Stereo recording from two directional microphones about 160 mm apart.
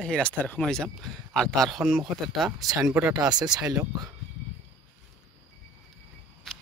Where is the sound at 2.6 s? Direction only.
20° right (ahead or behind).